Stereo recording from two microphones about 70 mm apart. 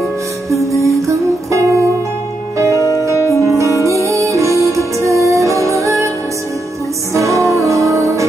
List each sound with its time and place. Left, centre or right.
0.7 s music: right
2.8 s music: left
3.3 s music: right
7.2 s music: right